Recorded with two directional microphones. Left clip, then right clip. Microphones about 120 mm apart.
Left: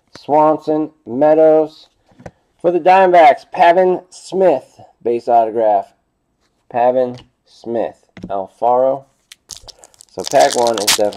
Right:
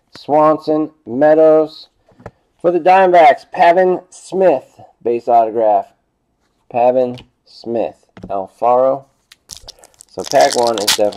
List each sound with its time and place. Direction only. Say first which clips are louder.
0.1 s speech: right 1 dB; centre (ahead or behind)
6.7 s speech: right 1 dB; 20° right (ahead or behind)
8.3 s speech: right 1 dB; centre (ahead or behind)
9.0 s crunch: left 2 dB; 10° left (ahead or behind)